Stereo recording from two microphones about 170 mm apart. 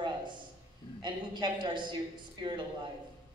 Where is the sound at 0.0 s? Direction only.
25° right (ahead or behind).